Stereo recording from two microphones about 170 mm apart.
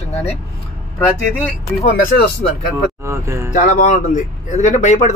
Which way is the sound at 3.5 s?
50° left (ahead or behind).